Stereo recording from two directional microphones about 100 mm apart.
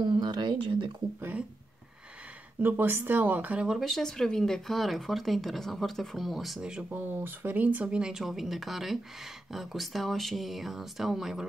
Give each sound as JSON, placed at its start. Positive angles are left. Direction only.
{"t": 0.0, "sound": "a sound", "side_deg": -45}
{"t": 2.6, "sound": "speech", "side_deg": -20}
{"t": 6.9, "sound": "speech", "side_deg": -20}